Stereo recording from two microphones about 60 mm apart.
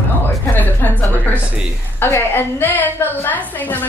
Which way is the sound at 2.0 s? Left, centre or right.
Left.